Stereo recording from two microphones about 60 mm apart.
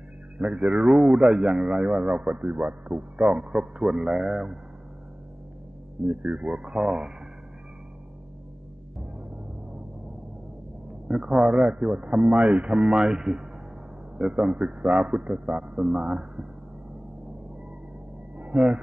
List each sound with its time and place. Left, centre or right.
0.6 s a man's voice: centre
0.8 s a man's voice: centre
2.3 s a man's voice: right; by 4.6 s centre
6.0 s a man's voice: right; by 7.1 s centre
11.1 s a man's voice: centre
12.7 s a man's voice: centre
18.4 s vehicle: right